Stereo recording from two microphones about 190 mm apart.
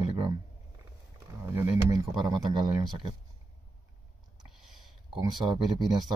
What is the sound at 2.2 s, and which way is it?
Speech, 20° right (ahead or behind).